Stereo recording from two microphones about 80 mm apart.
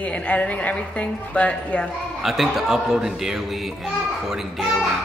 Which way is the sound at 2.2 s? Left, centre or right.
Centre.